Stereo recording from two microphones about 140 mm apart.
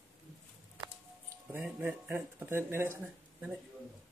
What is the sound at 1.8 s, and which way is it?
Speech, 15° right (ahead or behind).